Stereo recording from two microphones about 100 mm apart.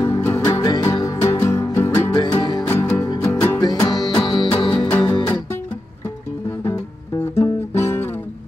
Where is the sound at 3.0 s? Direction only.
30° left (ahead or behind).